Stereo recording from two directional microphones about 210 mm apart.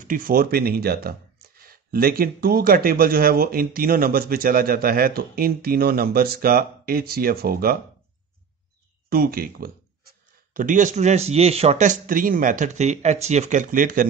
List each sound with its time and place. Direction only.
0.0 s speech: 40° right (ahead or behind)
9.1 s speech: 45° right (ahead or behind)